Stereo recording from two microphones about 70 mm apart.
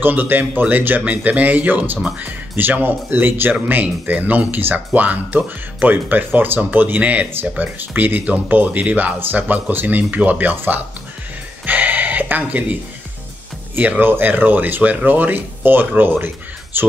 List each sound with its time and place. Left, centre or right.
0.0 s speech: right
11.6 s music: right
13.7 s speech: right